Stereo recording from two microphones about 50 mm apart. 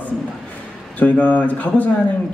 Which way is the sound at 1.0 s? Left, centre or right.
Left.